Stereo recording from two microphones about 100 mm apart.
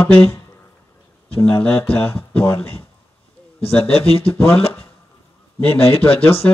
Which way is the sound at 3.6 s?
75° left (ahead or behind).